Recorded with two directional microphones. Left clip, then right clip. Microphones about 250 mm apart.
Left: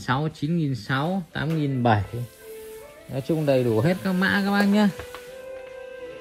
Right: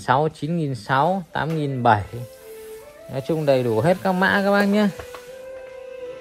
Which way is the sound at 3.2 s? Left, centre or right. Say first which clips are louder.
Right 3 dB; right.